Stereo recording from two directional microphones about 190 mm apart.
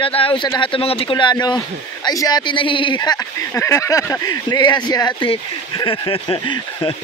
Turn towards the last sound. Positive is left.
turn(degrees=25)  # may be behind; listen again after turning